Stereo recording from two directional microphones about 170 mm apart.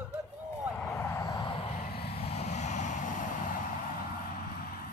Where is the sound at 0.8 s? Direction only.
20° left (ahead or behind); by 3.6 s 50° left (ahead or behind).